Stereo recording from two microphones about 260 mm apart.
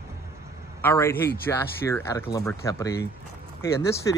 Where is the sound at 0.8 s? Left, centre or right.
Centre.